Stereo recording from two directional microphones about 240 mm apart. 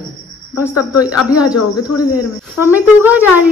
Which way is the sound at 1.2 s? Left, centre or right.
Centre.